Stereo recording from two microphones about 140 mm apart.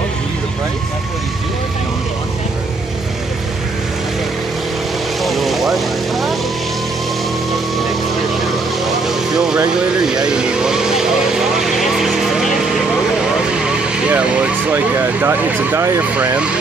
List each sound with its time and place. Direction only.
5.2 s vehicle: centre (ahead or behind)
9.0 s vehicle: 5° right (ahead or behind)
13.6 s vehicle: 10° right (ahead or behind)